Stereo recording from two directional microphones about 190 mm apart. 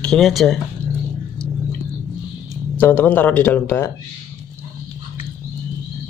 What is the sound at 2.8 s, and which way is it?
Speech, 10° left (ahead or behind).